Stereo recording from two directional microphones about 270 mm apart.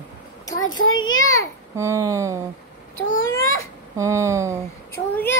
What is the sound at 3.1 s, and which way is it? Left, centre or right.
Speech, left.